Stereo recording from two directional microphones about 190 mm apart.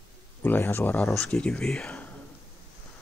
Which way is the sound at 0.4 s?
10° left (ahead or behind).